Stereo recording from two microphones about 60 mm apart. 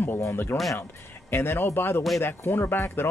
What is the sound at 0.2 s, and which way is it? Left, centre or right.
Speech, left.